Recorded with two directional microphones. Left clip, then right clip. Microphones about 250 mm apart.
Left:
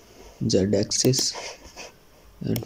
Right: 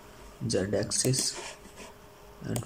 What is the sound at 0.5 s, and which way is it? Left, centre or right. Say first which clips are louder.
Speech: left 7 dB; centre.